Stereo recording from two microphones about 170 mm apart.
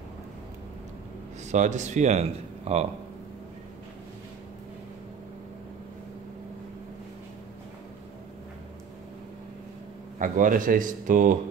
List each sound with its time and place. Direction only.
1.5 s speech: 45° right (ahead or behind)
10.1 s speech: 50° right (ahead or behind)